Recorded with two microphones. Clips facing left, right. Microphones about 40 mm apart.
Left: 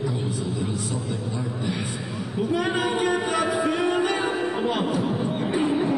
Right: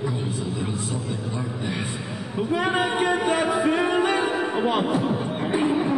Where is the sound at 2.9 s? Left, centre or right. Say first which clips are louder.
Right 1 dB; right.